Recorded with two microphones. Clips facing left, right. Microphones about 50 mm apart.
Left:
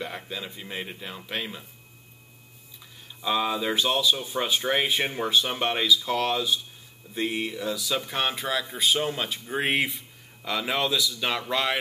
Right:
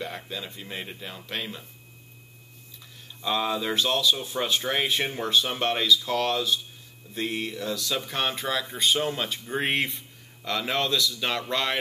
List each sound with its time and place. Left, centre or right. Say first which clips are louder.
0.0 s speech: even; centre
3.2 s speech: left 1 dB; centre